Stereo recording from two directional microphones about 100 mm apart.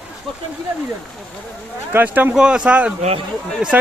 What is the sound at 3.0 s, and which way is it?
Speech, 90° right.